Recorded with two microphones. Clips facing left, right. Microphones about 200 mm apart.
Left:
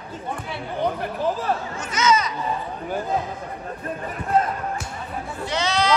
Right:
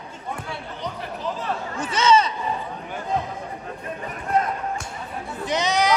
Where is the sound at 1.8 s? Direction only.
30° right (ahead or behind).